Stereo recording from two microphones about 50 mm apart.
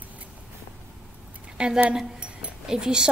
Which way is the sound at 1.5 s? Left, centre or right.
Centre.